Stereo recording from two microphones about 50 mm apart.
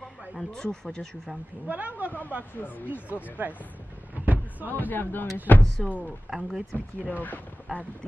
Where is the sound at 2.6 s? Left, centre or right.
Left.